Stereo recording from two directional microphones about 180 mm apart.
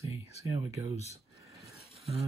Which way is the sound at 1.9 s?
35° right (ahead or behind).